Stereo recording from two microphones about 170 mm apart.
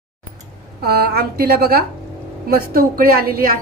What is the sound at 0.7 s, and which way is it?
A woman's voice, 70° right (ahead or behind).